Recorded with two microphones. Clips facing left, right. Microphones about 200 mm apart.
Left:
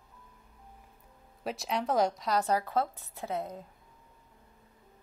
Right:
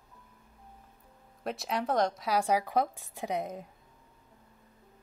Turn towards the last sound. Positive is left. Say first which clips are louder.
# right 2 dB
turn(degrees=-15)  # may be behind; listen again after turning